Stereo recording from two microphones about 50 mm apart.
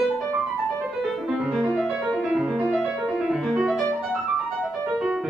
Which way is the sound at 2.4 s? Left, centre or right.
Right.